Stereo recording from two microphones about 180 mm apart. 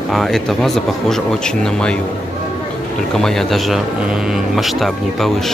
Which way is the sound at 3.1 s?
Centre (ahead or behind).